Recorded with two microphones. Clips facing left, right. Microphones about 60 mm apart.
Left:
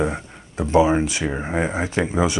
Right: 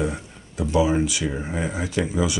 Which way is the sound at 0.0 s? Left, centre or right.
Left.